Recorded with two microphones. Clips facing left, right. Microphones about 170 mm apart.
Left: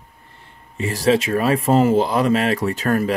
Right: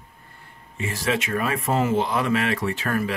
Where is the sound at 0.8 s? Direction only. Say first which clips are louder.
Left 8 dB; 35° left (ahead or behind).